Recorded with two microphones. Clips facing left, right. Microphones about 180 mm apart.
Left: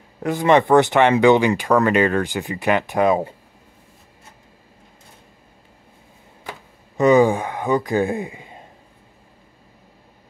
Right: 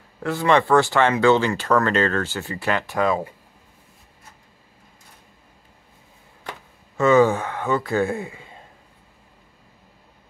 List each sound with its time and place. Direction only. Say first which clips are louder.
0.2 s speech: left 3 dB; 20° left (ahead or behind)
7.0 s speech: left 2 dB; 15° left (ahead or behind)